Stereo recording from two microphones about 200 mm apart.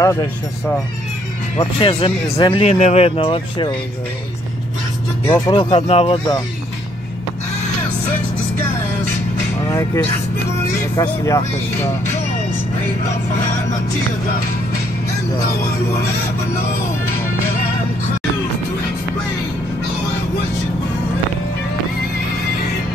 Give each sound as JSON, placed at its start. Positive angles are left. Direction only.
{"t": 0.0, "sound": "speech", "side_deg": 15}
{"t": 1.6, "sound": "speech", "side_deg": 25}
{"t": 5.3, "sound": "speech", "side_deg": 25}
{"t": 11.0, "sound": "speech", "side_deg": 15}